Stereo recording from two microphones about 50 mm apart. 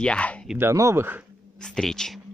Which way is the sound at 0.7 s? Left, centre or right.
Right.